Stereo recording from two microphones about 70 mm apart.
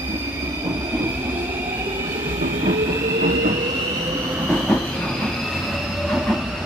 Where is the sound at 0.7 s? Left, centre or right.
Right.